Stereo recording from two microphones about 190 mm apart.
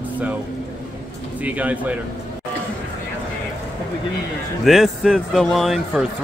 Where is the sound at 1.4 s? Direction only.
10° right (ahead or behind).